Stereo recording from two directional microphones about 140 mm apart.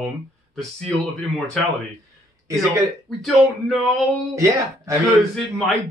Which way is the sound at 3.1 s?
Centre (ahead or behind).